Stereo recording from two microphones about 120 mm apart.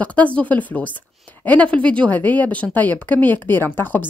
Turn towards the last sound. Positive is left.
turn(degrees=15)  # may be behind; listen again after turning